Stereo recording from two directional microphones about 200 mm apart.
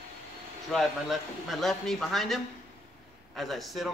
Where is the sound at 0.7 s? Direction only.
Centre (ahead or behind).